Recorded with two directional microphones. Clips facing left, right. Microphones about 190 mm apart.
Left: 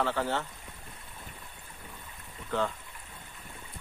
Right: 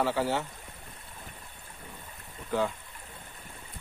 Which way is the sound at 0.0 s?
10° right (ahead or behind).